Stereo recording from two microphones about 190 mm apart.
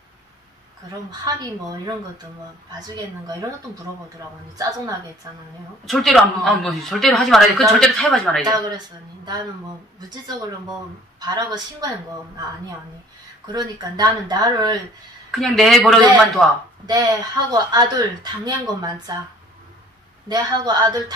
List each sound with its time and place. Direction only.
1.2 s speech: 20° right (ahead or behind)
4.6 s a woman's voice: 20° right (ahead or behind)
5.9 s a man's voice: centre (ahead or behind)
8.5 s speech: 25° right (ahead or behind)
13.5 s speech: 20° right (ahead or behind)
15.3 s a man's voice: centre (ahead or behind)
16.8 s speech: 20° right (ahead or behind)
20.2 s speech: 20° right (ahead or behind)